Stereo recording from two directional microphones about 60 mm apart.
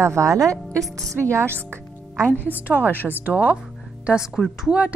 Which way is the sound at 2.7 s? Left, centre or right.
Right.